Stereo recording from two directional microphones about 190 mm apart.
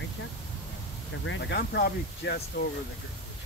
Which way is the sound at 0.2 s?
90° left.